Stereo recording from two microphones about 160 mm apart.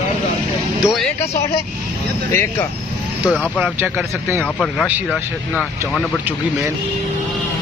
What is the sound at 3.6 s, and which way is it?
Speech, 10° right (ahead or behind).